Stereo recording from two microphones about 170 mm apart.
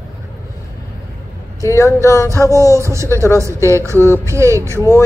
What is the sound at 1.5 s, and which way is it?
Speech, 20° left (ahead or behind).